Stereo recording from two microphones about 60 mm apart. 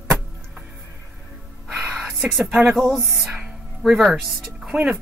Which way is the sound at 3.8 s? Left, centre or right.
Centre.